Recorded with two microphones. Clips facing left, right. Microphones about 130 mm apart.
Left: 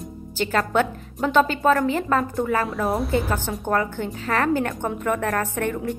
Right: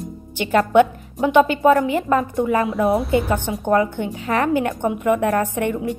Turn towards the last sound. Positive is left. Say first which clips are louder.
# right 5 dB
turn(degrees=-15)  # may be behind; listen again after turning